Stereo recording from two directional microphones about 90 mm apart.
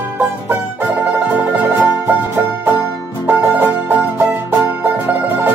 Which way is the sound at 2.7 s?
20° right (ahead or behind).